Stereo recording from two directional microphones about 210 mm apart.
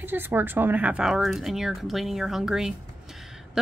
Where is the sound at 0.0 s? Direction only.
10° right (ahead or behind).